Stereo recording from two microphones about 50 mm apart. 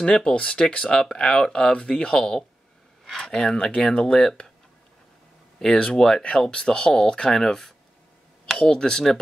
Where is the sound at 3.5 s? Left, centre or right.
Centre.